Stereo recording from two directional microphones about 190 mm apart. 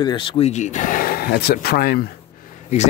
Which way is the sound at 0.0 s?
25° left (ahead or behind).